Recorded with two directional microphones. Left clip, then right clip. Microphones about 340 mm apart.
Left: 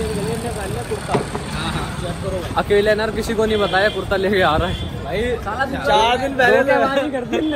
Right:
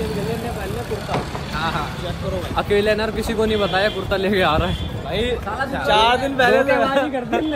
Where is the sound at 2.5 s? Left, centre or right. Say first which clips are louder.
Left 2 dB; centre.